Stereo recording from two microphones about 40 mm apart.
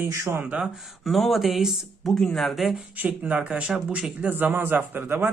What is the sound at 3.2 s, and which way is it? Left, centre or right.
Speech, right.